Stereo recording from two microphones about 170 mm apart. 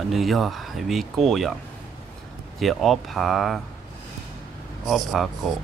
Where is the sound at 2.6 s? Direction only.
Centre (ahead or behind).